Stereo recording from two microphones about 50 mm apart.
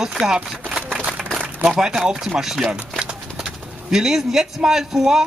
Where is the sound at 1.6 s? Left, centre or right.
Centre.